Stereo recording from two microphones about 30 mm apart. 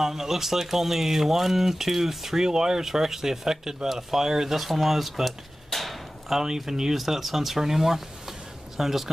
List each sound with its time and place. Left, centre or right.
0.0 s speech: centre
2.4 s speech: right
2.8 s speech: centre
4.6 s speech: centre
6.2 s speech: centre